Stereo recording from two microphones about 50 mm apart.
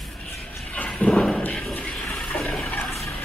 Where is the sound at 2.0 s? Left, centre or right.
Centre.